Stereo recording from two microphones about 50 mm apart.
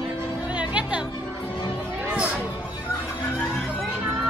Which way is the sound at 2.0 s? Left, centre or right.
Right.